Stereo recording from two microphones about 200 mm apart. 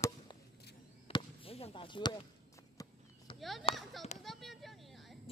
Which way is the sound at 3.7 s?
Centre (ahead or behind).